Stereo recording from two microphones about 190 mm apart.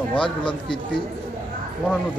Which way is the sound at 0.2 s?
25° left (ahead or behind).